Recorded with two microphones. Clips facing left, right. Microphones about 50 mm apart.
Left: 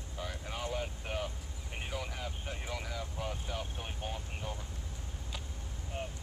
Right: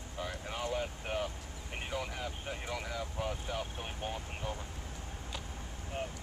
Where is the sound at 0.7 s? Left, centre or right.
Centre.